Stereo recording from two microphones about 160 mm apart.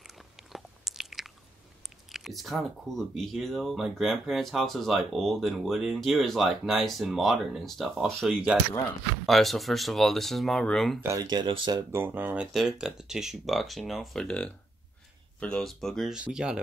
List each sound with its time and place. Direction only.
0.5 s chewing: centre (ahead or behind)
2.1 s speech: centre (ahead or behind)
9.2 s speech: centre (ahead or behind)
11.0 s speech: 20° right (ahead or behind)
11.9 s speech: 15° right (ahead or behind)